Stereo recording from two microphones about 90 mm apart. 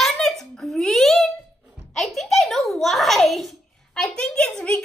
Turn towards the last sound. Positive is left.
turn(degrees=10)  # may be behind; listen again after turning